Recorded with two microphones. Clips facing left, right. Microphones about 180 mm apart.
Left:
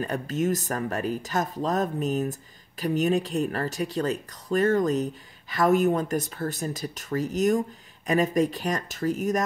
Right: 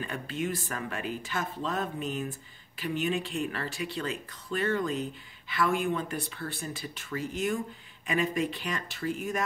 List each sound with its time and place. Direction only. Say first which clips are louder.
0.0 s speech: left 7 dB; 45° left (ahead or behind)